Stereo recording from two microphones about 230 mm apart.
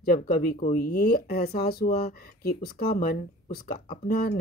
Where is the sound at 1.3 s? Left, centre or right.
Left.